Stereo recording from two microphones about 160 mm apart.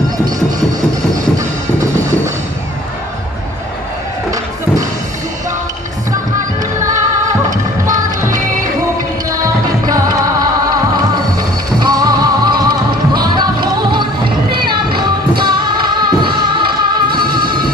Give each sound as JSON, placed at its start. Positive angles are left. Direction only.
{"t": 1.4, "sound": "music", "side_deg": -20}
{"t": 7.8, "sound": "music", "side_deg": -25}
{"t": 9.8, "sound": "music", "side_deg": -25}